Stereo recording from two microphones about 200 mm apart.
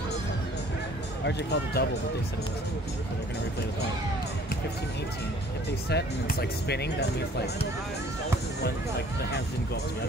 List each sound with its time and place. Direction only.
1.2 s speech: 55° left (ahead or behind)
5.7 s speech: 55° left (ahead or behind)